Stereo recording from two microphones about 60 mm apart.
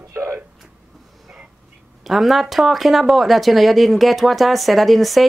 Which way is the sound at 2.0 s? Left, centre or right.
Centre.